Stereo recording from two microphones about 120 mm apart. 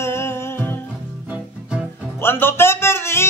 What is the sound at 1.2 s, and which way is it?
Music, 10° right (ahead or behind).